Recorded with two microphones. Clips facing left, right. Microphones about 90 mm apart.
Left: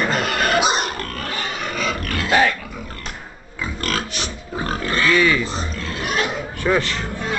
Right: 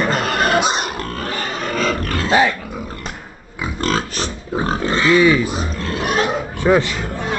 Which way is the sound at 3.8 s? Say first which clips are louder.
Right 6 dB; 35° right (ahead or behind).